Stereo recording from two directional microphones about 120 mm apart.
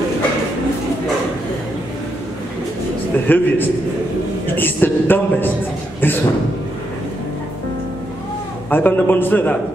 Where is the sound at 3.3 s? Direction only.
15° left (ahead or behind).